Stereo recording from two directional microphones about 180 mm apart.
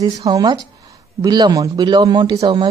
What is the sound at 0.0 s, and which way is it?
Speech, 20° right (ahead or behind).